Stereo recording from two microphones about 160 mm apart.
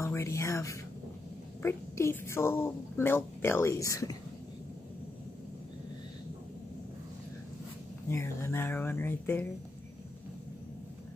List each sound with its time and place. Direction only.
0.0 s a sound: 20° left (ahead or behind)
1.6 s speech: 15° left (ahead or behind)
8.1 s speech: 15° left (ahead or behind)